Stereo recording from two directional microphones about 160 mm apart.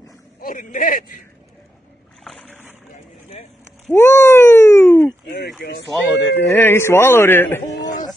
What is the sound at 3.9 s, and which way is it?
Speech, 15° left (ahead or behind).